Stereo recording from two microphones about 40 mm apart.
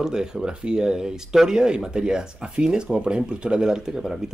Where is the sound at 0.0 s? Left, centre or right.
Centre.